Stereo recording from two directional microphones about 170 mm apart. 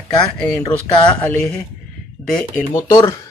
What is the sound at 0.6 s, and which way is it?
Speech, 30° left (ahead or behind).